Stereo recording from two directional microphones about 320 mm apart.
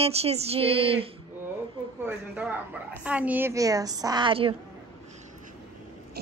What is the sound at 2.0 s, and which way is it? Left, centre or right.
A woman's voice, centre.